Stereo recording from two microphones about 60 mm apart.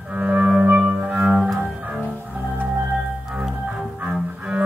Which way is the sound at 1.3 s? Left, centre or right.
Centre.